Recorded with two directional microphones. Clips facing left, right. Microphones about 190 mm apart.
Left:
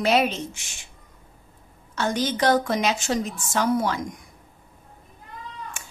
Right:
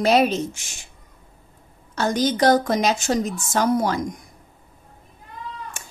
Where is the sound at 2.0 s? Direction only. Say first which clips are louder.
Right 4 dB; 40° right (ahead or behind).